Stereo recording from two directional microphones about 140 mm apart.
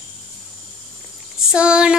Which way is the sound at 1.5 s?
5° right (ahead or behind).